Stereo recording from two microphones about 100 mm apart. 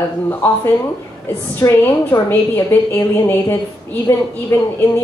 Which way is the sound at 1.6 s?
30° left (ahead or behind).